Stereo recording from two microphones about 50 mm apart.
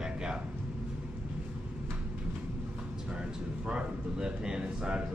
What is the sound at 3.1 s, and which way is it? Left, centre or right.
A man's voice, right.